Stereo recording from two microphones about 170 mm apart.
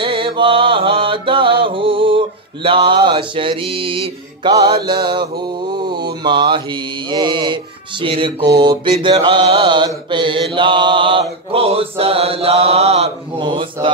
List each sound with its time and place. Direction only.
0.0 s mantra: 30° right (ahead or behind)
6.2 s mantra: 30° right (ahead or behind)
8.0 s music: 30° right (ahead or behind)
8.5 s mantra: 30° right (ahead or behind)